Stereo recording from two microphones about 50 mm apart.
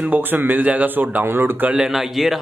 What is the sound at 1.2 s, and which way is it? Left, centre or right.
Speech, right.